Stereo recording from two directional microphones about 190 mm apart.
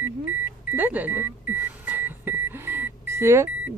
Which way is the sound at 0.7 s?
10° right (ahead or behind).